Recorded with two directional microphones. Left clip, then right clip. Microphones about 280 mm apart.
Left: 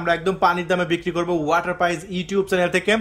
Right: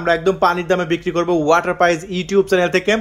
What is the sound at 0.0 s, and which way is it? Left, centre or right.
A man's voice, centre.